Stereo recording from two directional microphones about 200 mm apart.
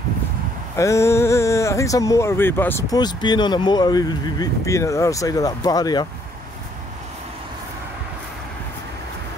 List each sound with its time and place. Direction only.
0.7 s speech: 15° left (ahead or behind)